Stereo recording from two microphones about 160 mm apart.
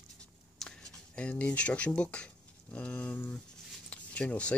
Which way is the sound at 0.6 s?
5° left (ahead or behind).